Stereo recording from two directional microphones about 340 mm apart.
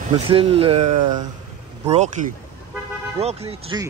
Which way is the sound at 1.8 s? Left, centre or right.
Centre.